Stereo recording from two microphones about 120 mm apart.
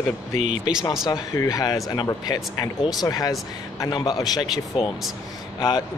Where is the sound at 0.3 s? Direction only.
75° right (ahead or behind).